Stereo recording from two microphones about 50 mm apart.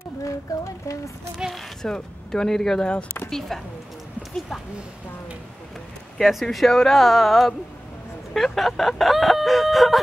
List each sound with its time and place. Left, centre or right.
0.5 s a sound: left
1.5 s speech: centre
6.1 s chicken: centre